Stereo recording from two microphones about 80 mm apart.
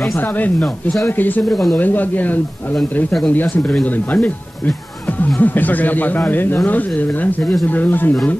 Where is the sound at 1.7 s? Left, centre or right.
Left.